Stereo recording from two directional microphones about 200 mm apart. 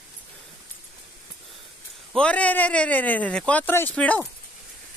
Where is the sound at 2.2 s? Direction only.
5° left (ahead or behind).